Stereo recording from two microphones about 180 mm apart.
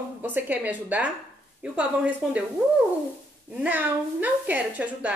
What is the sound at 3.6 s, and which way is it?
A woman's voice, 10° right (ahead or behind).